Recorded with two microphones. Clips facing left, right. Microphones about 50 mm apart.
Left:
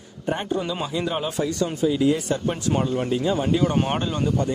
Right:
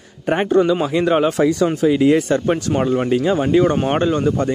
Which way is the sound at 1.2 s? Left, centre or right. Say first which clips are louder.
Right 9 dB; right.